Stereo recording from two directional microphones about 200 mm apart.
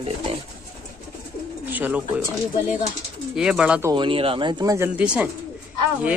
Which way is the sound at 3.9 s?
25° right (ahead or behind).